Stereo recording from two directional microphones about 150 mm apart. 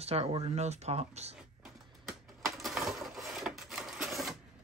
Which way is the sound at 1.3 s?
5° right (ahead or behind).